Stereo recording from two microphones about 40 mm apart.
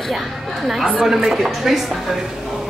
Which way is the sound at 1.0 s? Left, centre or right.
Centre.